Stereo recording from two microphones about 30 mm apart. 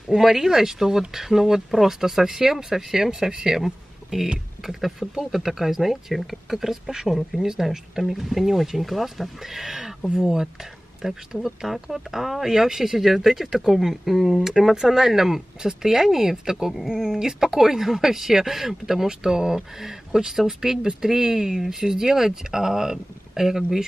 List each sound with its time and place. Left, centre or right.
0.1 s speech: centre
3.6 s a sound: centre
4.6 s speech: centre
6.5 s speech: centre
14.7 s speech: centre